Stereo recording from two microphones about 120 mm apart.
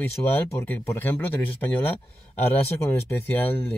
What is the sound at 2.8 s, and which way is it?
Speech, 20° left (ahead or behind).